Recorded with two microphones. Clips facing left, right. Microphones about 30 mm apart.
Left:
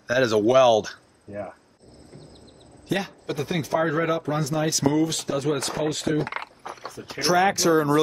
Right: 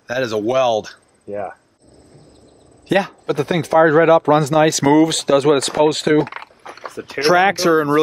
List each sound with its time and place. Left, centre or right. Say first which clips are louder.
0.1 s speech: even; centre
1.3 s speech: right 8 dB; right
2.9 s speech: right 10 dB; right
3.9 s speech: right 13 dB; right
6.6 s a sound: right 5 dB; right
7.2 s speech: right 7 dB; right